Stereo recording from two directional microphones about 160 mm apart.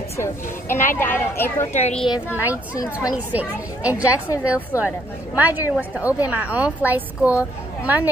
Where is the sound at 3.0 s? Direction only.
10° right (ahead or behind).